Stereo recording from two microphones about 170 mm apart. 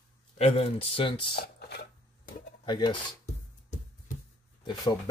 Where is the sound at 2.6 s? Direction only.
25° left (ahead or behind).